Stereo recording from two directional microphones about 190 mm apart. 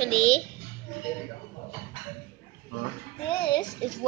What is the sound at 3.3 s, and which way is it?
Music, 25° left (ahead or behind).